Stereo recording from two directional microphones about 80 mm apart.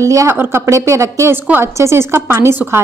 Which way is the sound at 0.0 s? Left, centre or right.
Right.